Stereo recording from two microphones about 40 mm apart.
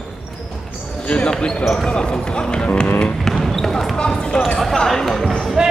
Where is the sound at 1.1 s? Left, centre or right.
Left.